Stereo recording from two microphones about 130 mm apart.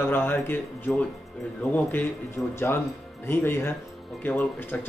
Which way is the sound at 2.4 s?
25° left (ahead or behind).